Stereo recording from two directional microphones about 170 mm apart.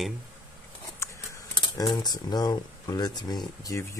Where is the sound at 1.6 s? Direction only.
25° left (ahead or behind).